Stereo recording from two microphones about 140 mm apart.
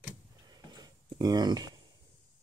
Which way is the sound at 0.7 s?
30° right (ahead or behind).